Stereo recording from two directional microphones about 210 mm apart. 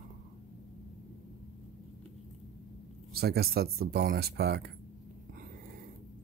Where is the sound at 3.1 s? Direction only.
50° right (ahead or behind).